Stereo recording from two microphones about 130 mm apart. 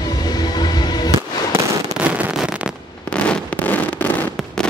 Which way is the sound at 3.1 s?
10° left (ahead or behind).